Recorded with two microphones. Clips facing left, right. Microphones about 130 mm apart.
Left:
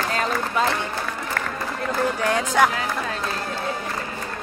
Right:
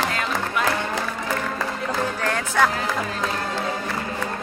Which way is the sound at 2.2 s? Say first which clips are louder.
Left 2 dB; 15° left (ahead or behind).